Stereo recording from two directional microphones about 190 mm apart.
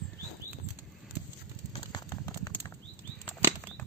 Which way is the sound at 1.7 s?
20° left (ahead or behind).